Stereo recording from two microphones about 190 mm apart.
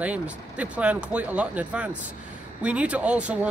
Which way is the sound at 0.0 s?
5° right (ahead or behind).